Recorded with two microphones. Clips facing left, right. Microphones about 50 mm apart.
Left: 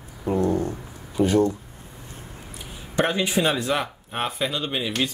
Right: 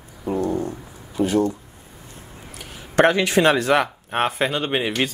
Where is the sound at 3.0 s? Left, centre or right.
Right.